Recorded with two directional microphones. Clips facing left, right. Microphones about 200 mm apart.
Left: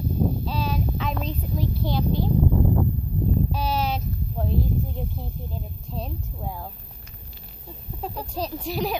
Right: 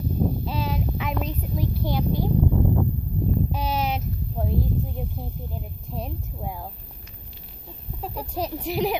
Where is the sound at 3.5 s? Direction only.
20° right (ahead or behind).